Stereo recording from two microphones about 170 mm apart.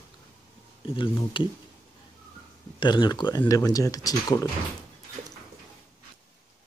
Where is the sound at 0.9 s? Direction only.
30° left (ahead or behind).